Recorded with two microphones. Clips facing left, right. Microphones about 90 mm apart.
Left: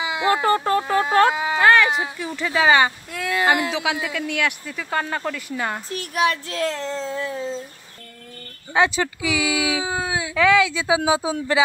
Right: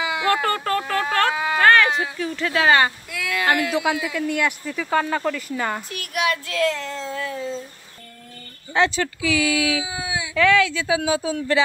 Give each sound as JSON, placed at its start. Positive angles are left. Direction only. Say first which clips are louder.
{"t": 0.2, "sound": "speech", "louder": "left 4 dB", "side_deg": 20}
{"t": 1.7, "sound": "speech", "louder": "even", "side_deg": 5}
{"t": 3.1, "sound": "a child's voice", "louder": "left 2 dB", "side_deg": 35}
{"t": 3.7, "sound": "speech", "louder": "right 2 dB", "side_deg": 0}
{"t": 5.9, "sound": "a child's voice", "louder": "left 2 dB", "side_deg": 30}
{"t": 8.7, "sound": "speech", "louder": "left 1 dB", "side_deg": 15}
{"t": 9.8, "sound": "speech", "louder": "left 4 dB", "side_deg": 40}
{"t": 10.3, "sound": "speech", "louder": "even", "side_deg": 10}